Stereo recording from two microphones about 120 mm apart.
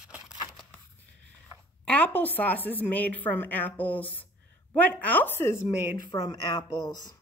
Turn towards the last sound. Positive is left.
turn(degrees=35)  # may be behind; listen again after turning